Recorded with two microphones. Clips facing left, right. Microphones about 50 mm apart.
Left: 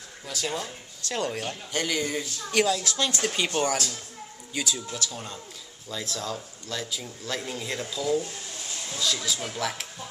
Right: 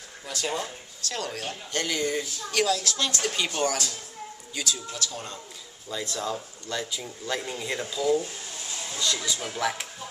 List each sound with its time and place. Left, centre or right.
0.3 s speech: centre
1.0 s a woman's voice: left
1.7 s a woman's voice: centre
5.9 s speech: centre